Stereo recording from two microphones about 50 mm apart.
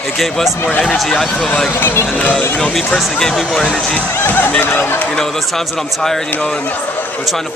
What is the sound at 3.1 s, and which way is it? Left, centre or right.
Speech, centre.